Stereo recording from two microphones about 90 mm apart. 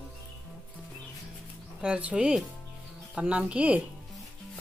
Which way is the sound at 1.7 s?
15° right (ahead or behind).